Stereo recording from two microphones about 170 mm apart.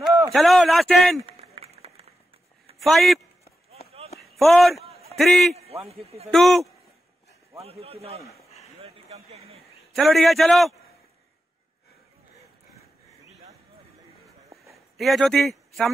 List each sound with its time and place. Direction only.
0.3 s speech: centre (ahead or behind)
1.2 s a sound: 35° right (ahead or behind)
2.8 s speech: centre (ahead or behind)
4.2 s a man's voice: centre (ahead or behind)
5.6 s a man's voice: 35° right (ahead or behind)
6.3 s speech: centre (ahead or behind)
7.5 s a man's voice: 35° right (ahead or behind)
8.7 s a sound: 35° right (ahead or behind)
9.9 s speech: centre (ahead or behind)
15.0 s a man's voice: centre (ahead or behind)